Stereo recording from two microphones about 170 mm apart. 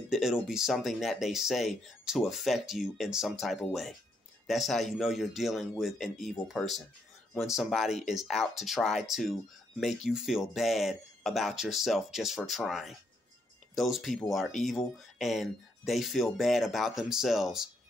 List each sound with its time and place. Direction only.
0.1 s speech: 5° right (ahead or behind)